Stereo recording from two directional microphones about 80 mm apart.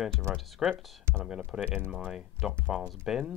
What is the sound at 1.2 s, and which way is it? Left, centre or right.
Speech, centre.